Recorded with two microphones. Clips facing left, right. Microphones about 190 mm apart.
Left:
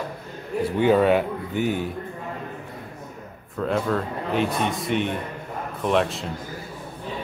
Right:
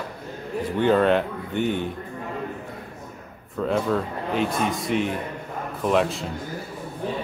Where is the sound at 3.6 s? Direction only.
5° right (ahead or behind).